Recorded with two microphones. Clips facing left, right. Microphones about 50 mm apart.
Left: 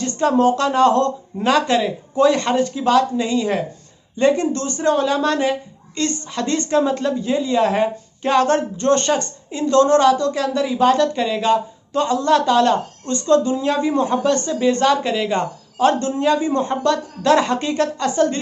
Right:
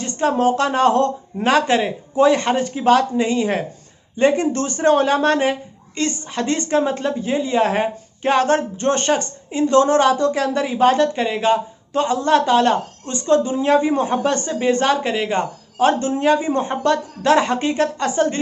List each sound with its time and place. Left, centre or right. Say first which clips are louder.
0.0 s a woman's voice: left 2 dB; right
2.1 s a woman's voice: even; centre